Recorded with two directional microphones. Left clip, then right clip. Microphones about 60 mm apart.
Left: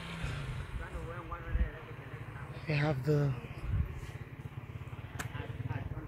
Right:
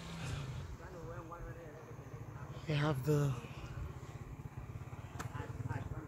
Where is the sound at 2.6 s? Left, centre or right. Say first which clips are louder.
Left 3 dB; centre.